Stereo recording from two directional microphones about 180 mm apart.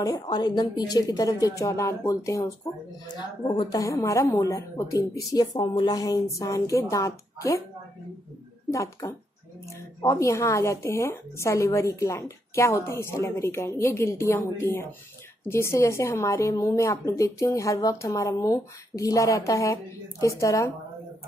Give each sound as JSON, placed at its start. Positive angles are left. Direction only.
{"t": 0.0, "sound": "a woman's voice", "side_deg": 20}
{"t": 8.7, "sound": "a woman's voice", "side_deg": 15}